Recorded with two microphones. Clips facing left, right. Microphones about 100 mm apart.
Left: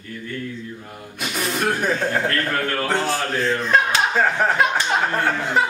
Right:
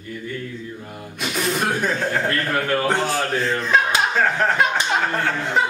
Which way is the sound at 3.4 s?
Centre (ahead or behind).